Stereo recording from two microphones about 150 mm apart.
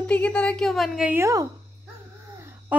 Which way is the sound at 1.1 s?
20° right (ahead or behind).